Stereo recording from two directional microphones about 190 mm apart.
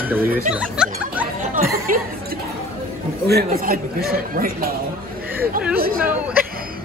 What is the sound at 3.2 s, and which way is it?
Speech, 55° right (ahead or behind).